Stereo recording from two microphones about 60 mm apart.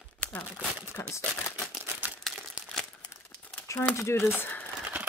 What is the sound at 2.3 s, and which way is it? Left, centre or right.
Crumpling, centre.